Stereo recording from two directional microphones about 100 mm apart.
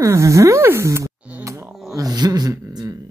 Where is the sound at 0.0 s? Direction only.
30° right (ahead or behind).